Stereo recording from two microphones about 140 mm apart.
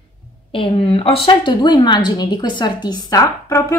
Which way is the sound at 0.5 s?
40° left (ahead or behind).